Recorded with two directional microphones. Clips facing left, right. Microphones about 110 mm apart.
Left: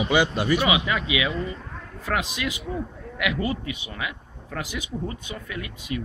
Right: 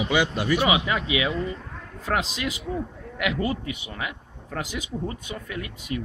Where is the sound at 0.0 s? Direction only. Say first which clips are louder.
Left 2 dB; 25° left (ahead or behind).